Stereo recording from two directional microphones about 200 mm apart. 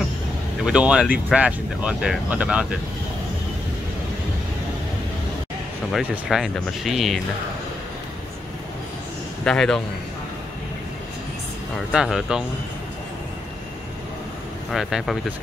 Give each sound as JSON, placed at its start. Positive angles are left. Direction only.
{"t": 0.7, "sound": "speech", "side_deg": -5}
{"t": 5.9, "sound": "speech", "side_deg": 0}
{"t": 9.4, "sound": "speech", "side_deg": 5}
{"t": 11.9, "sound": "speech", "side_deg": -5}
{"t": 14.7, "sound": "speech", "side_deg": 0}